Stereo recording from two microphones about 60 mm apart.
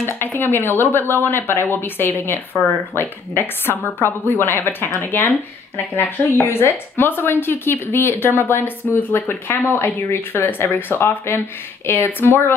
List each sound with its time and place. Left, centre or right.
0.0 s a woman's voice: left